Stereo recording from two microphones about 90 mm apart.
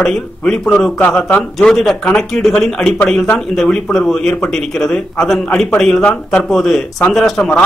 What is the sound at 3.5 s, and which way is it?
Speech, 5° left (ahead or behind).